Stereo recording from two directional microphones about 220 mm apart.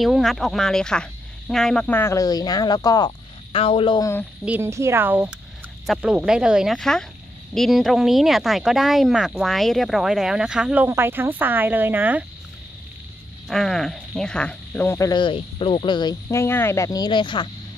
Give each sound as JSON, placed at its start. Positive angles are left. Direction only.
{"t": 0.0, "sound": "speech", "side_deg": 0}
{"t": 4.5, "sound": "speech", "side_deg": -10}
{"t": 13.5, "sound": "speech", "side_deg": 0}